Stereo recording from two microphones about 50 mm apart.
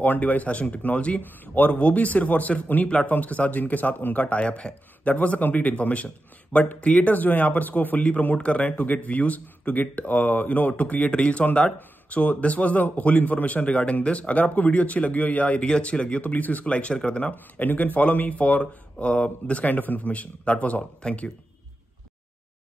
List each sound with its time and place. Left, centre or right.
0.0 s a man's voice: left
1.2 s speech: left
4.4 s a man's voice: left
17.3 s a man's voice: left
19.7 s a man's voice: left